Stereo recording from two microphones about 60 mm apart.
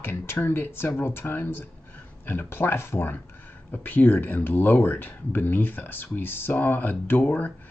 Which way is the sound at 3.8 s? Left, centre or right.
Left.